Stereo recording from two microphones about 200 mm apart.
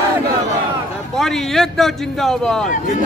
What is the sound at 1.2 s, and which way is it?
A man's voice, centre (ahead or behind).